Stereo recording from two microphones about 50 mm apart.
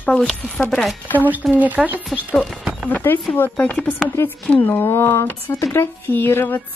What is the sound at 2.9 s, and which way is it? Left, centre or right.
Speech, left.